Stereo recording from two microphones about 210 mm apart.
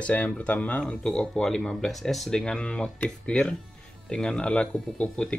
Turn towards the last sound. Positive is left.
turn(degrees=5)  # may be behind; listen again after turning